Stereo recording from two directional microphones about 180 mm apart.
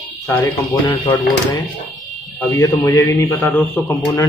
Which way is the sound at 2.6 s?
20° left (ahead or behind).